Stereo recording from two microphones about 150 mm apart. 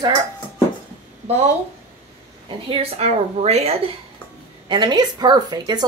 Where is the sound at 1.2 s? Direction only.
45° right (ahead or behind).